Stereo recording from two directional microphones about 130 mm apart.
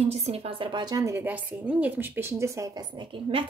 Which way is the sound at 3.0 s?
40° right (ahead or behind).